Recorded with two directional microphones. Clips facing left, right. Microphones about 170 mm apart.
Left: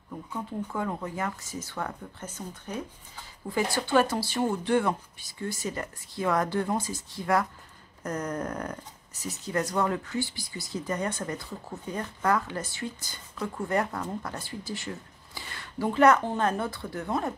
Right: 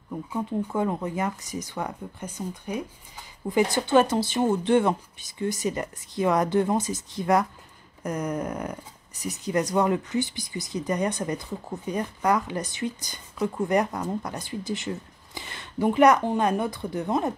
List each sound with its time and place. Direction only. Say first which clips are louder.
0.3 s speech: right 6 dB; 20° right (ahead or behind)